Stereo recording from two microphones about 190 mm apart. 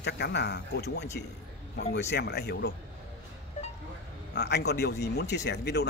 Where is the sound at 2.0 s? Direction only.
60° left (ahead or behind).